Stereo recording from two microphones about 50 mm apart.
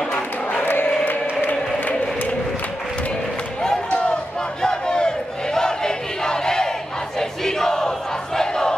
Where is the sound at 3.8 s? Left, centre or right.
Centre.